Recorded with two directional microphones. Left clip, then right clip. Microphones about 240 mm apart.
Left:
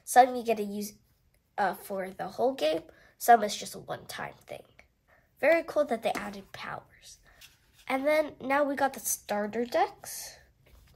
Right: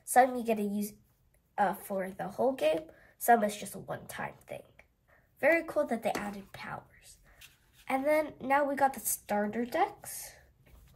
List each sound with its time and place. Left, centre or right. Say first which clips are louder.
0.1 s a woman's voice: left 4 dB; centre
7.3 s a sound: left 1 dB; centre
7.8 s a woman's voice: left 2 dB; centre